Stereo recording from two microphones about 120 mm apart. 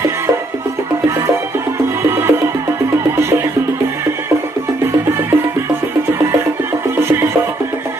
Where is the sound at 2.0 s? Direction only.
20° right (ahead or behind).